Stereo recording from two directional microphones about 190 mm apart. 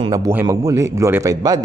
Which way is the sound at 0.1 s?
10° right (ahead or behind).